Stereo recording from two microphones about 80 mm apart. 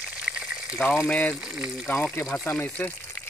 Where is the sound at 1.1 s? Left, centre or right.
Centre.